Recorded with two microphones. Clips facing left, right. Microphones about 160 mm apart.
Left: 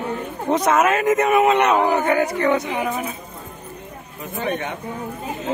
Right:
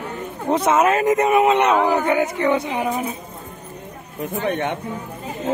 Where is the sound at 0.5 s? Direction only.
25° right (ahead or behind).